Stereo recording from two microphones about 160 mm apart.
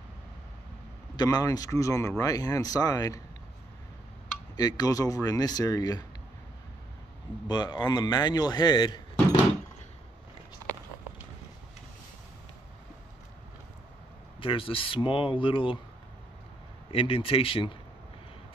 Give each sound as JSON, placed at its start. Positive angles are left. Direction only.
{"t": 1.1, "sound": "speech", "side_deg": 25}
{"t": 4.6, "sound": "speech", "side_deg": 25}
{"t": 7.4, "sound": "speech", "side_deg": 25}
{"t": 14.4, "sound": "speech", "side_deg": 35}
{"t": 16.9, "sound": "speech", "side_deg": 35}